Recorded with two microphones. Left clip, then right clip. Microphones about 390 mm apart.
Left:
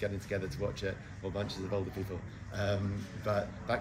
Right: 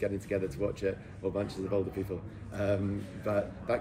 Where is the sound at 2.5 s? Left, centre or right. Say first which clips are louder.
Right 4 dB; centre.